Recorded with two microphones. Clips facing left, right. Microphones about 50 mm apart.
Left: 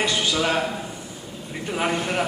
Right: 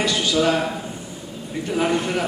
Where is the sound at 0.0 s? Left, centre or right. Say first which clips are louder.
Right 3 dB; centre.